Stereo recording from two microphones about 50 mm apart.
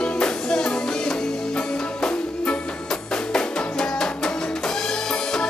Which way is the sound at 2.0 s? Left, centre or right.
Centre.